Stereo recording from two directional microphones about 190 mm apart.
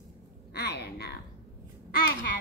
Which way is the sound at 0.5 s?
60° left (ahead or behind).